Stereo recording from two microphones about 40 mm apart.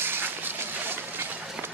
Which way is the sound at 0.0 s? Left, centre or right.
Right.